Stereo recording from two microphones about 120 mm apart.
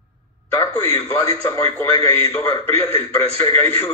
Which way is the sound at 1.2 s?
55° right (ahead or behind).